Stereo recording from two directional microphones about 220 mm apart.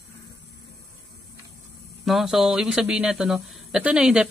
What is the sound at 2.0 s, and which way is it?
Speech, centre (ahead or behind).